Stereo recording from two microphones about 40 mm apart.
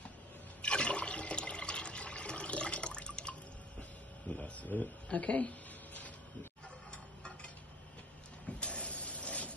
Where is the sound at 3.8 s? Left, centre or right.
Left.